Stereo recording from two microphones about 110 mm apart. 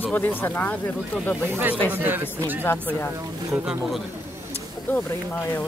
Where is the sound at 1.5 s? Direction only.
20° right (ahead or behind).